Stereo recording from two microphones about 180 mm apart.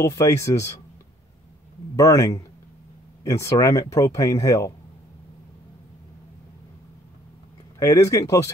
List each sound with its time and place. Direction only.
0.0 s speech: 15° left (ahead or behind)
2.0 s speech: 15° left (ahead or behind)
7.8 s speech: 15° left (ahead or behind)